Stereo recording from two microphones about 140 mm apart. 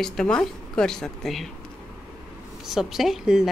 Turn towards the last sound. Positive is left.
turn(degrees=-5)  # may be behind; listen again after turning